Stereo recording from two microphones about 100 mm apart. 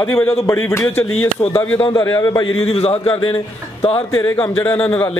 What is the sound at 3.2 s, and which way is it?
Speech, 65° left (ahead or behind).